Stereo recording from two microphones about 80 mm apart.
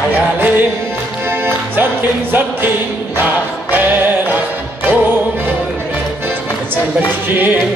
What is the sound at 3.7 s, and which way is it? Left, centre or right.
Music, right.